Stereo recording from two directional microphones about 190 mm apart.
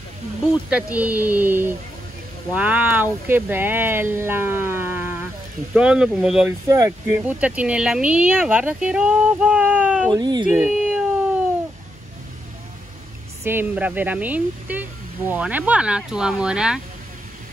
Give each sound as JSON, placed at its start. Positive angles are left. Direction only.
{"t": 0.7, "sound": "speech", "side_deg": -5}
{"t": 10.1, "sound": "speech", "side_deg": -20}
{"t": 10.5, "sound": "a sound", "side_deg": -5}
{"t": 13.4, "sound": "speech", "side_deg": -10}